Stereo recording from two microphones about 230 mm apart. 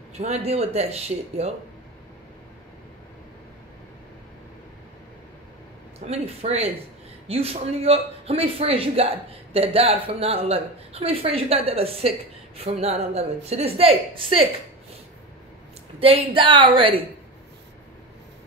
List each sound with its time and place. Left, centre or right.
0.2 s a man's voice: right
6.0 s a man's voice: right
16.0 s a man's voice: right